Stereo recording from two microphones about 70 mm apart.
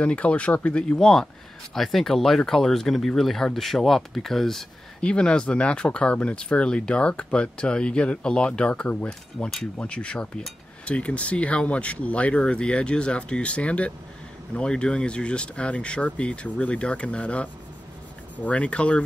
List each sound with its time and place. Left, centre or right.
0.0 s speech: centre